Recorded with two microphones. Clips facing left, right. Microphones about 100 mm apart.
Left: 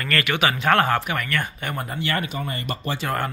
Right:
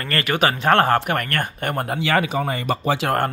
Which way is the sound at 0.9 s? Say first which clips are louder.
Right 3 dB; 55° right (ahead or behind).